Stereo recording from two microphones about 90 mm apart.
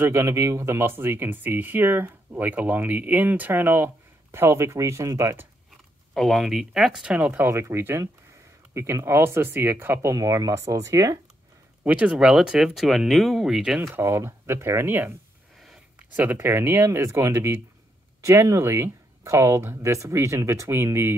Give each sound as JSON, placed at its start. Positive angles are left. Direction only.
{"t": 0.1, "sound": "speech", "side_deg": -35}
{"t": 6.1, "sound": "speech", "side_deg": 0}
{"t": 10.1, "sound": "speech", "side_deg": -35}
{"t": 11.8, "sound": "speech", "side_deg": -15}
{"t": 13.9, "sound": "speech", "side_deg": -30}
{"t": 16.3, "sound": "speech", "side_deg": -30}